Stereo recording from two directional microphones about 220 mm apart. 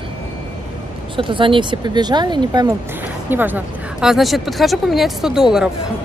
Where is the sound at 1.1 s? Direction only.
20° right (ahead or behind).